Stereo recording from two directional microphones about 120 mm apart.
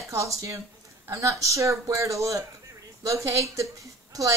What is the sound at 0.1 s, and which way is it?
A woman's voice, 25° right (ahead or behind).